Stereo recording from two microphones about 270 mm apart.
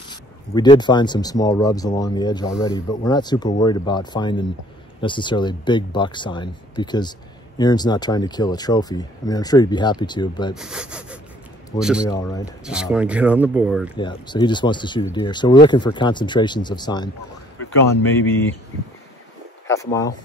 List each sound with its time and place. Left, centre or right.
0.1 s speech: centre
10.5 s speech: centre
12.1 s speech: centre
12.6 s speech: centre
13.9 s speech: centre
19.7 s speech: centre